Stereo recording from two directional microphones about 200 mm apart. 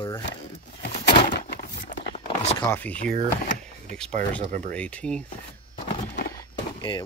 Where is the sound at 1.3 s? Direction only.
40° left (ahead or behind).